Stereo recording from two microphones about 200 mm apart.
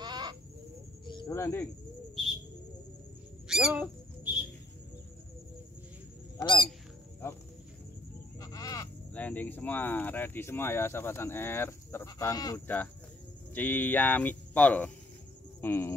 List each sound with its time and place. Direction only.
0.0 s chicken: 20° right (ahead or behind)
1.0 s cricket: 20° left (ahead or behind)
3.4 s squawk: 5° right (ahead or behind)
6.3 s squawk: 25° left (ahead or behind)
8.4 s speech: 15° left (ahead or behind)